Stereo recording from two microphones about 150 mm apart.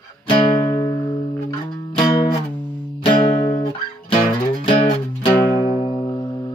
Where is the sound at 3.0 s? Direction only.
30° left (ahead or behind).